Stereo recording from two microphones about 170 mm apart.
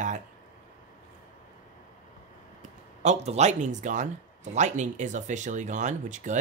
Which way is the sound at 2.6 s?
40° right (ahead or behind).